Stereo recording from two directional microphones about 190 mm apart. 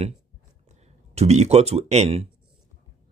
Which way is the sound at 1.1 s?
35° right (ahead or behind).